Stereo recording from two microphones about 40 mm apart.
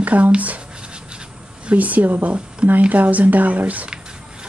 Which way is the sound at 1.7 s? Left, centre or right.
Right.